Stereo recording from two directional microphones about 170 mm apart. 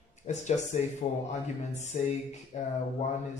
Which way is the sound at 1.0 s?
40° left (ahead or behind).